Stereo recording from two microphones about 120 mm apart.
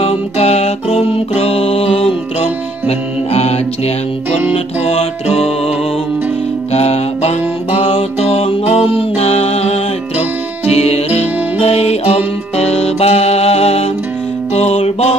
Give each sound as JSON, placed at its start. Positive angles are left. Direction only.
{"t": 0.0, "sound": "music", "side_deg": 60}
{"t": 6.7, "sound": "music", "side_deg": 60}